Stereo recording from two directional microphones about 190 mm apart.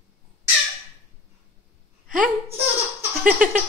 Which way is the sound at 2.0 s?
45° right (ahead or behind).